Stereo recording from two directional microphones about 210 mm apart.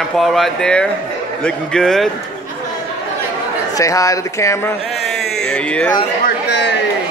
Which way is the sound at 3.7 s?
15° left (ahead or behind).